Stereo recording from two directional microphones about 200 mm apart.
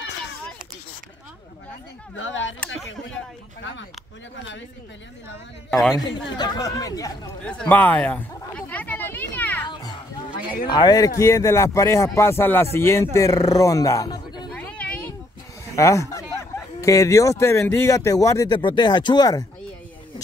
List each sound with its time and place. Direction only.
2.1 s speech: 70° left (ahead or behind)
5.7 s a man's voice: centre (ahead or behind)
6.3 s speech: 20° left (ahead or behind)
7.4 s a sound: 5° left (ahead or behind)
9.7 s music: 20° left (ahead or behind)
10.7 s speech: 20° left (ahead or behind)
14.5 s a sound: 5° left (ahead or behind)
15.6 s speech: 15° left (ahead or behind)